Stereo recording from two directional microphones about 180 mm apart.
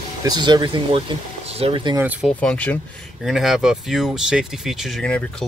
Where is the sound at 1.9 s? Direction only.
10° right (ahead or behind).